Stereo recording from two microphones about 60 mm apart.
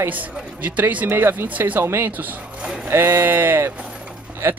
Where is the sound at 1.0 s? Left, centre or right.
Right.